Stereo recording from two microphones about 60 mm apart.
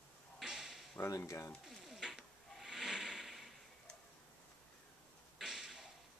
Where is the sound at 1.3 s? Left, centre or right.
Left.